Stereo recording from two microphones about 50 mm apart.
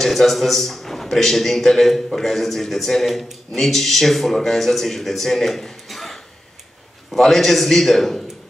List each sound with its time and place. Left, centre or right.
0.0 s a man's voice: centre